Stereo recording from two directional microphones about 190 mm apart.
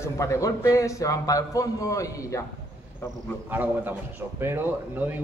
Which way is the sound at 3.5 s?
10° right (ahead or behind).